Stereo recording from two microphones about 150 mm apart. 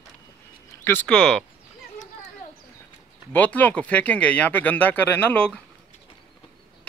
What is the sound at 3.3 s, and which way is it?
Speech, 10° left (ahead or behind).